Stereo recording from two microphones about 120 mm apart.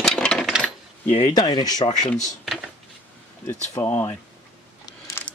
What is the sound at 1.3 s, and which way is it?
Speech, 35° left (ahead or behind).